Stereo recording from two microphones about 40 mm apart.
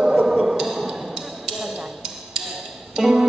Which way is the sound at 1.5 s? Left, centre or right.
Centre.